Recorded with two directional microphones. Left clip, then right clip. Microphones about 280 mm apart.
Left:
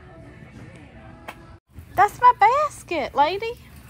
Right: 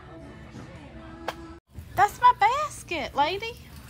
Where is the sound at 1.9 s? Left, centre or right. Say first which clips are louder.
Left 4 dB; centre.